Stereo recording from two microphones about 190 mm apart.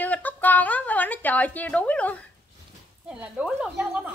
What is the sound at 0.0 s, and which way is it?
A woman's voice, 10° left (ahead or behind).